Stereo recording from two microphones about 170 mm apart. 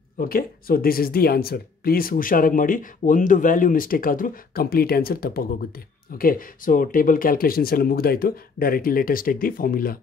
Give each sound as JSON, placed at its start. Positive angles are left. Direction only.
{"t": 0.2, "sound": "speech", "side_deg": 60}